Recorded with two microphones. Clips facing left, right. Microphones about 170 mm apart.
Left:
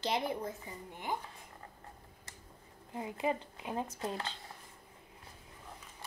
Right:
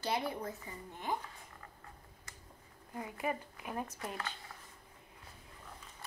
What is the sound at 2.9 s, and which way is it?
Speech, 25° left (ahead or behind).